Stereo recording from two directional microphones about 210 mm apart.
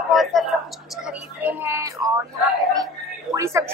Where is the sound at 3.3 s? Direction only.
15° right (ahead or behind).